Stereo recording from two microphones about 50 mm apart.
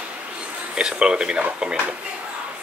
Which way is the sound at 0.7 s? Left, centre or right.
Centre.